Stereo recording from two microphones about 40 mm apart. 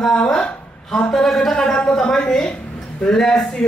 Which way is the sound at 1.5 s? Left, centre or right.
Centre.